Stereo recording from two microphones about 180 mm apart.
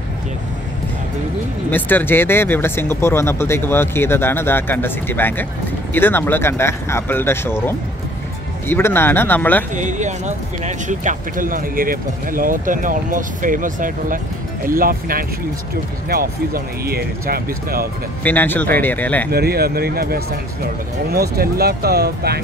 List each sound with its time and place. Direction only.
1.7 s speech: 10° left (ahead or behind)
9.8 s speech: 45° right (ahead or behind)
18.2 s speech: 10° left (ahead or behind)
19.3 s speech: 60° right (ahead or behind)